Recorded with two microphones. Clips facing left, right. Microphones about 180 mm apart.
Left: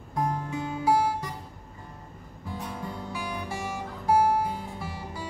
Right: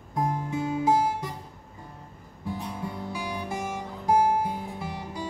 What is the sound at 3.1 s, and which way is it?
Music, 20° right (ahead or behind).